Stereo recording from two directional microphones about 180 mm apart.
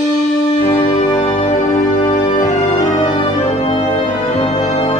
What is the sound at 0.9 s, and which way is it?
Music, 35° left (ahead or behind).